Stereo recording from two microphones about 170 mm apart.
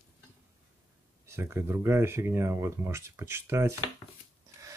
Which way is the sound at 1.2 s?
15° right (ahead or behind).